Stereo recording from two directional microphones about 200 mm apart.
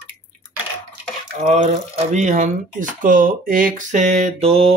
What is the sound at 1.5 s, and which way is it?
Speech, 35° right (ahead or behind).